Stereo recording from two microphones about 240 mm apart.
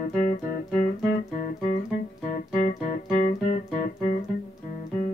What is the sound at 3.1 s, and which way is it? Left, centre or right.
Music, left.